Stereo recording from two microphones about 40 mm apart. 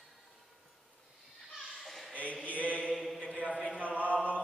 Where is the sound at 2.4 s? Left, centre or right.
Right.